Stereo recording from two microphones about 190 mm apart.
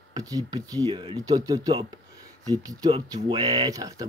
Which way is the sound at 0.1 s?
20° right (ahead or behind).